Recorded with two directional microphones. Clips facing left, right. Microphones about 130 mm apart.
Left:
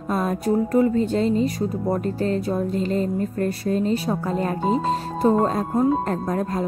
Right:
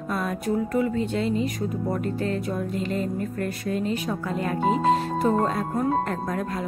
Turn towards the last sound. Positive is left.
turn(degrees=35)  # may be behind; listen again after turning